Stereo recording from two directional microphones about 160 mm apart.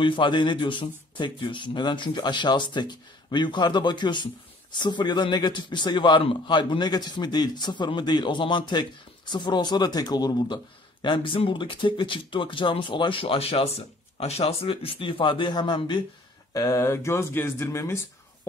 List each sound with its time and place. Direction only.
0.0 s a man's voice: 30° left (ahead or behind)